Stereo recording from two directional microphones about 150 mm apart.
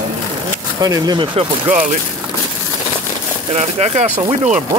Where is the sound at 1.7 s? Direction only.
60° right (ahead or behind).